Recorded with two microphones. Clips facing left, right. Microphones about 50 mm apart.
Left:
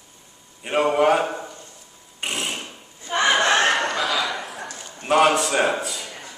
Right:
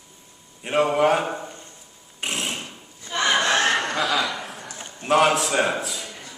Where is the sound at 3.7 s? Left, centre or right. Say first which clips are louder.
Even; centre.